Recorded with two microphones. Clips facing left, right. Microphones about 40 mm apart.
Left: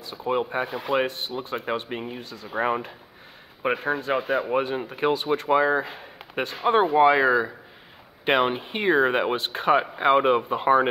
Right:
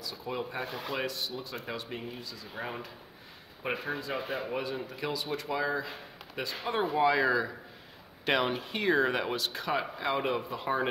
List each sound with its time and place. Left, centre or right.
0.0 s speech: left
0.7 s speech: centre
0.9 s speech: left